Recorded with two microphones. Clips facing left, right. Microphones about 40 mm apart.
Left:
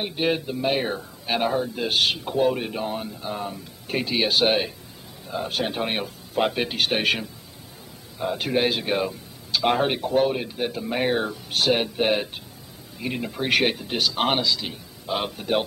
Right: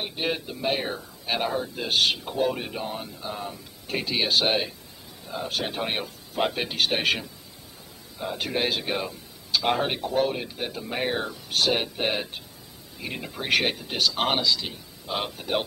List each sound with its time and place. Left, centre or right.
0.0 s speech: centre